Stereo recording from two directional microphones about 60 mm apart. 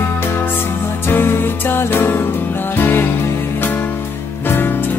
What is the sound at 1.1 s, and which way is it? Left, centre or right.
Music, left.